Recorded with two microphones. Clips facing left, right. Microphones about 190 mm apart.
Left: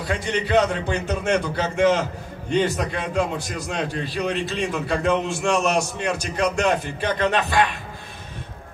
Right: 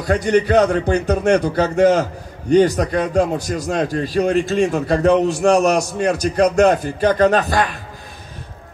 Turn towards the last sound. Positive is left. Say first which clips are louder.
# right 4 dB
turn(degrees=-40)  # may be behind; listen again after turning